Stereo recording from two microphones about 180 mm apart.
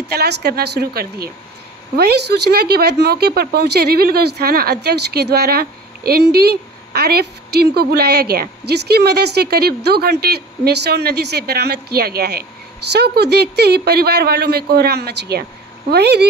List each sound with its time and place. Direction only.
0.1 s speech: 65° right (ahead or behind)